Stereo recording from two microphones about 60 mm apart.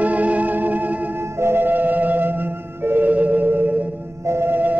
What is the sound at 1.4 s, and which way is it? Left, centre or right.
Music, right.